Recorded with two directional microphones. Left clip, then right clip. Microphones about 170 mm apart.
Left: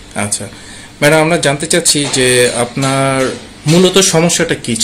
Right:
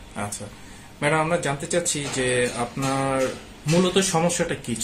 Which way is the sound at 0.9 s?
65° left (ahead or behind).